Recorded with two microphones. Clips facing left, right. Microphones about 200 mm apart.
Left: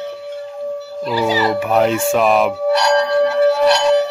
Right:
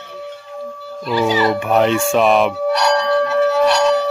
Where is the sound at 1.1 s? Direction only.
5° left (ahead or behind).